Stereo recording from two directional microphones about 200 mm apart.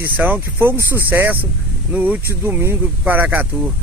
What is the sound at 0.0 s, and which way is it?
Speech, 10° right (ahead or behind).